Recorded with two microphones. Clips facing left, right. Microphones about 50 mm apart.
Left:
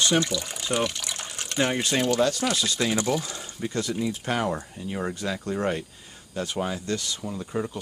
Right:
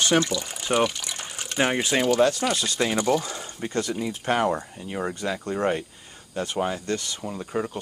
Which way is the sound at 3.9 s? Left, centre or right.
Centre.